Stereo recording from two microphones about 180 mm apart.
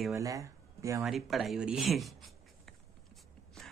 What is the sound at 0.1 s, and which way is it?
Speech, 20° right (ahead or behind).